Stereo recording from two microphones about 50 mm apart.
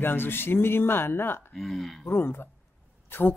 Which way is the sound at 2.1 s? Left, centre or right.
Left.